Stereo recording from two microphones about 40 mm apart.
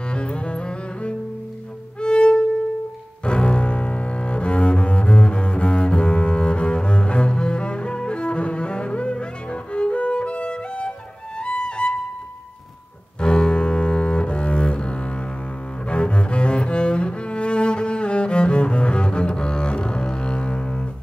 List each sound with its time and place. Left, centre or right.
0.1 s cello: left
2.0 s violin: left
3.3 s cello: left
11.3 s music: left
13.2 s cello: left